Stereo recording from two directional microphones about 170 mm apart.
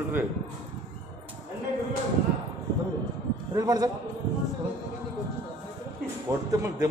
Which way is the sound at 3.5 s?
20° right (ahead or behind).